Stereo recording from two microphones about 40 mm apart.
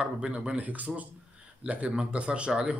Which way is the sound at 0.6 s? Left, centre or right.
Right.